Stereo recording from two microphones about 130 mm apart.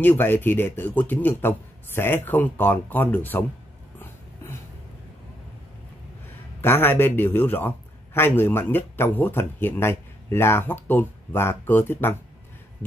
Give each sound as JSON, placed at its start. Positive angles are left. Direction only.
{"t": 0.0, "sound": "a man's voice", "side_deg": 15}
{"t": 6.6, "sound": "a man's voice", "side_deg": 15}